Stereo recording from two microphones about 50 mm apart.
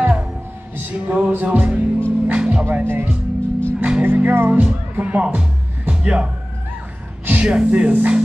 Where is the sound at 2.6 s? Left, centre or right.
Right.